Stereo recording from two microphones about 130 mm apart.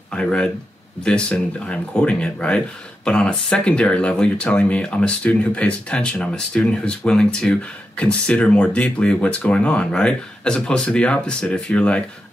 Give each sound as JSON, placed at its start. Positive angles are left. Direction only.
{"t": 0.1, "sound": "speech", "side_deg": 5}